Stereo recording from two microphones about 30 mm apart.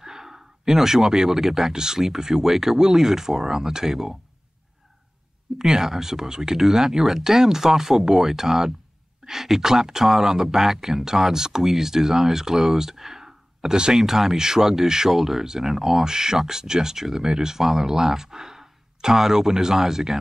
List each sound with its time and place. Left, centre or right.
0.0 s speech: centre
5.6 s speech: centre